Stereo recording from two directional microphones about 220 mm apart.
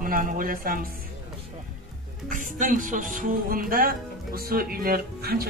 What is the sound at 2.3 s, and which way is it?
A man's voice, 35° right (ahead or behind).